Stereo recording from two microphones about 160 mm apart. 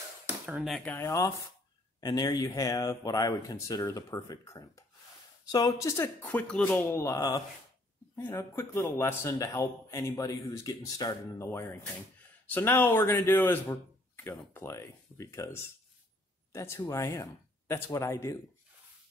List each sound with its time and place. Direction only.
0.3 s a sound: 10° right (ahead or behind)
0.7 s speech: centre (ahead or behind)
0.9 s a man's voice: 20° left (ahead or behind)